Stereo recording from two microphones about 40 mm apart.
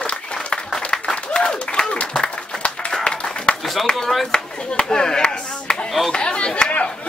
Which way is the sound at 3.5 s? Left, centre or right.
Left.